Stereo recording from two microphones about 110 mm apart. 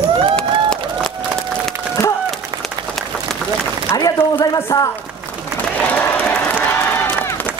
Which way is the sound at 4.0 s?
35° left (ahead or behind).